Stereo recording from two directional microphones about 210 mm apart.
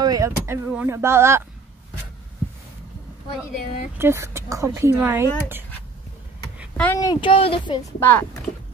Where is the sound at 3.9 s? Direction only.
10° right (ahead or behind).